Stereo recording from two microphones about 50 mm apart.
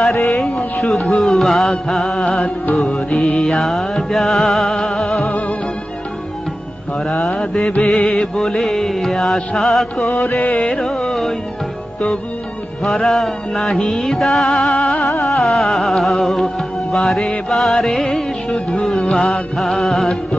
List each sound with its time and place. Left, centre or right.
0.0 s speech: centre
0.6 s music: centre
5.2 s music: left
7.0 s mantra: centre
7.8 s music: centre
12.8 s music: centre